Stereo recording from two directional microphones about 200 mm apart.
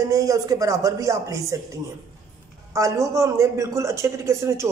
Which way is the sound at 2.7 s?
15° right (ahead or behind).